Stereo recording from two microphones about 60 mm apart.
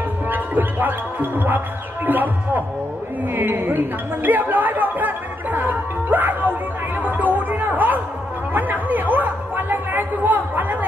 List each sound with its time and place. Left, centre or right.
0.3 s music: right
2.0 s speech: right
7.1 s music: right
8.5 s chatter: right